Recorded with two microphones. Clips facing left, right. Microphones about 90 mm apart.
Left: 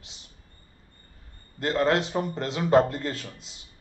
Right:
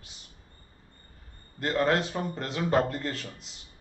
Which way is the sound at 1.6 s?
20° left (ahead or behind).